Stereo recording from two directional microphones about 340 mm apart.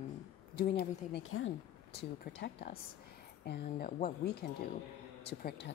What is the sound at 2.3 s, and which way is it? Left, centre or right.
Speech, left.